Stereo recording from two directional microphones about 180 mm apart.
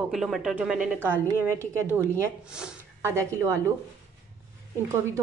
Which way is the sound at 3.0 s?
15° right (ahead or behind).